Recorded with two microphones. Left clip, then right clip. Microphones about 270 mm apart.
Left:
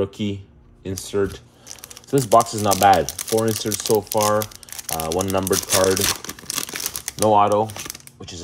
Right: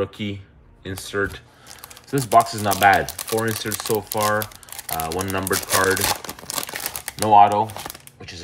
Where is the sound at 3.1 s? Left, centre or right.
Centre.